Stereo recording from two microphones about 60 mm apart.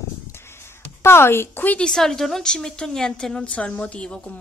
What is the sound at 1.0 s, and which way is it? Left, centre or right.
Speech, left.